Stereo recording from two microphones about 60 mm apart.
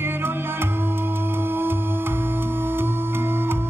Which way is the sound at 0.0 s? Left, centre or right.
Right.